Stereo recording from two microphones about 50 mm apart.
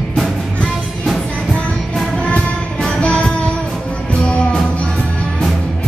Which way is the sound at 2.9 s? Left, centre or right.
Left.